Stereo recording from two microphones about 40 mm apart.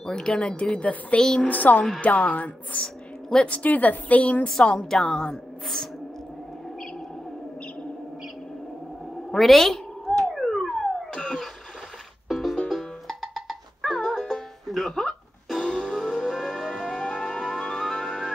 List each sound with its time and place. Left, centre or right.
0.0 s speech: centre
1.2 s a woman's voice: centre
1.5 s a woman's voice: left
2.8 s a sound: left
3.4 s a woman's voice: left
4.7 s a woman's voice: centre
9.3 s meow: centre
10.3 s police car: centre
12.3 s music: centre
16.0 s music: centre
16.7 s music: centre